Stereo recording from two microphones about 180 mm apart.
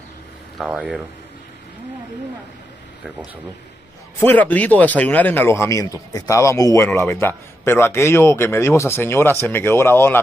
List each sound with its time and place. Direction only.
0.6 s speech: 5° right (ahead or behind)
4.2 s speech: 10° left (ahead or behind)